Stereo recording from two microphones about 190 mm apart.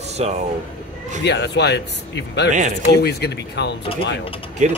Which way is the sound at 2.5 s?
40° right (ahead or behind).